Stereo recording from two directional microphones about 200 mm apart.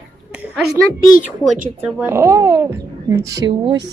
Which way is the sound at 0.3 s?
5° right (ahead or behind).